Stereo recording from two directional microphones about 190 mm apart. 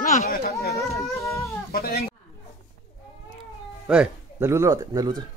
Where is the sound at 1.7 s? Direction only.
55° left (ahead or behind).